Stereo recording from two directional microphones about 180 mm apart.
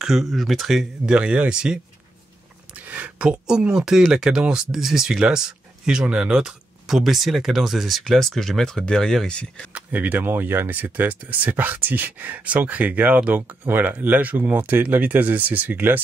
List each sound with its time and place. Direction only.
0.0 s speech: centre (ahead or behind)
9.7 s speech: 10° right (ahead or behind)